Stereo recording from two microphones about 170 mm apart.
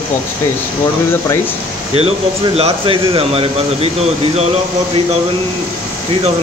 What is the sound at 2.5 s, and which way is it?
Speech, 35° right (ahead or behind).